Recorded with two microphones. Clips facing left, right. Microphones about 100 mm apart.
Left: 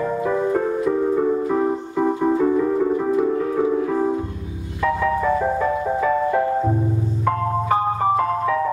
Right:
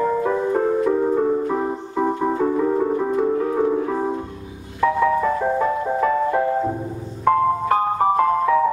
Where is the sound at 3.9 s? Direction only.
15° right (ahead or behind).